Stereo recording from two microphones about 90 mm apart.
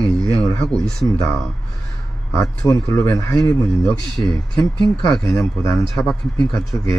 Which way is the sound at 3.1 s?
45° left (ahead or behind).